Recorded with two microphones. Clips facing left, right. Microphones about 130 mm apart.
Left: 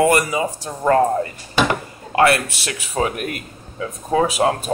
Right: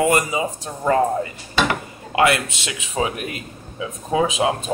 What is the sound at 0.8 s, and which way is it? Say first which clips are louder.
Speech: left 2 dB; 50° left (ahead or behind).